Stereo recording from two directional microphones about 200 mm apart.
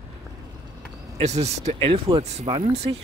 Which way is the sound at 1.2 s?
35° right (ahead or behind).